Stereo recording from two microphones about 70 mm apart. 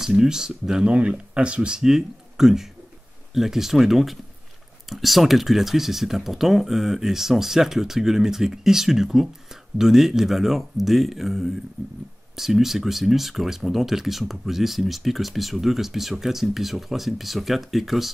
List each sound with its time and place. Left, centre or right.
0.0 s speech: centre